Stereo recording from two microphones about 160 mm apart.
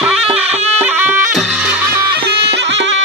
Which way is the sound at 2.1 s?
90° right.